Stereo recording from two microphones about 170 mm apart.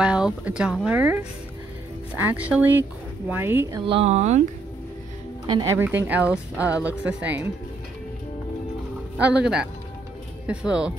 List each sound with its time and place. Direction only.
0.0 s speech: 5° right (ahead or behind)
3.8 s speech: 35° right (ahead or behind)
5.8 s speech: 10° right (ahead or behind)
9.2 s speech: 5° right (ahead or behind)